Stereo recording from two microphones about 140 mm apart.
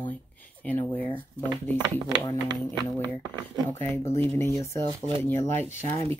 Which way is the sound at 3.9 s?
15° left (ahead or behind).